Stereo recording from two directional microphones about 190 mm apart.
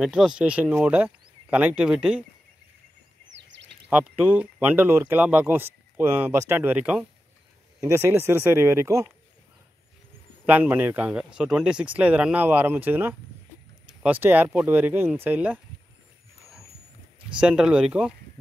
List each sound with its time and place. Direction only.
0.0 s speech: 5° right (ahead or behind)
3.4 s a sound: 70° right (ahead or behind)
3.9 s speech: 10° right (ahead or behind)
10.4 s speech: 10° right (ahead or behind)
17.4 s speech: 5° right (ahead or behind)